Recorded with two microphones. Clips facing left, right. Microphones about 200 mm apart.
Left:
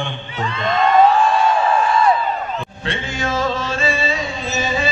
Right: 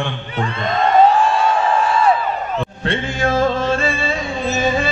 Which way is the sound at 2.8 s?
55° right (ahead or behind).